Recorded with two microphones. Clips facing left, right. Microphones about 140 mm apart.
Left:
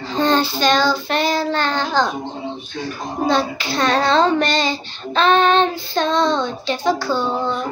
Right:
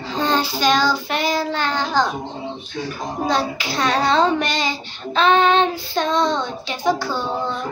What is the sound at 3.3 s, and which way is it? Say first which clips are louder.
A child's voice: left 3 dB; 10° right (ahead or behind).